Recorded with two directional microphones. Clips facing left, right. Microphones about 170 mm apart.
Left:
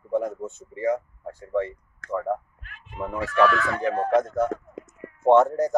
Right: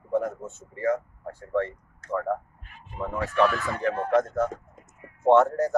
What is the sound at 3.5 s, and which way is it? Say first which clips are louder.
Speech: left 4 dB; 75° left (ahead or behind).